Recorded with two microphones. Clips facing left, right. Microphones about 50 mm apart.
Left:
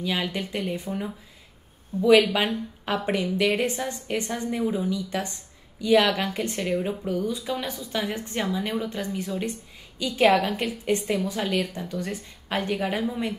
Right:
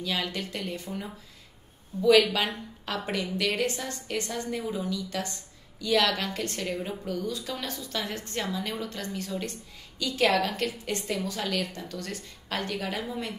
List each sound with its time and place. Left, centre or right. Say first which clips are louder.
0.0 s a woman's voice: left 3 dB; centre